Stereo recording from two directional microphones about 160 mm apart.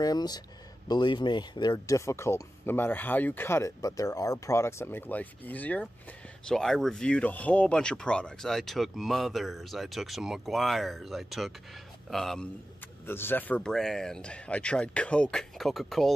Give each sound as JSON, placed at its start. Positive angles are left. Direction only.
{"t": 0.0, "sound": "speech", "side_deg": 25}
{"t": 13.0, "sound": "speech", "side_deg": 15}